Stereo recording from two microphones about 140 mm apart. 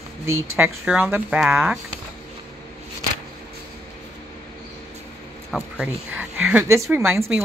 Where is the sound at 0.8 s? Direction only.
5° right (ahead or behind).